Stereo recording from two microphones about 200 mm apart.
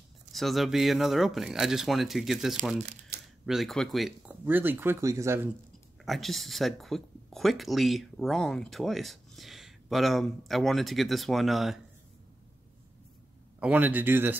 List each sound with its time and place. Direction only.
0.3 s speech: centre (ahead or behind)
3.1 s camera: 55° right (ahead or behind)
3.4 s speech: centre (ahead or behind)
4.5 s speech: 10° right (ahead or behind)
6.0 s speech: centre (ahead or behind)
13.6 s speech: 10° right (ahead or behind)